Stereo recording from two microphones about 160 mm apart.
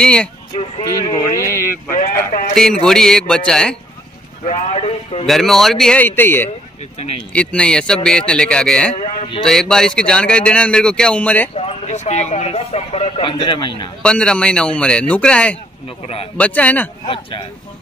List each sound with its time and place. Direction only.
0.0 s speech: 5° left (ahead or behind)
1.3 s a man's voice: 15° left (ahead or behind)
2.0 s speech: 55° left (ahead or behind)
2.5 s speech: 5° left (ahead or behind)
4.5 s speech: 40° left (ahead or behind)
5.2 s speech: centre (ahead or behind)
11.5 s speech: 40° left (ahead or behind)
14.0 s a man's voice: 5° left (ahead or behind)
17.0 s speech: 30° left (ahead or behind)